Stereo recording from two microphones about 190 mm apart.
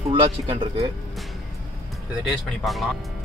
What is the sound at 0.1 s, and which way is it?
Speech, 25° right (ahead or behind).